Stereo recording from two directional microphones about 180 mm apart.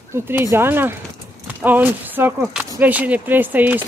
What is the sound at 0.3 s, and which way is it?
Speech, 10° right (ahead or behind).